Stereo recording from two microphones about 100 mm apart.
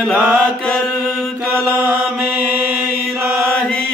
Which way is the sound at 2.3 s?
15° right (ahead or behind).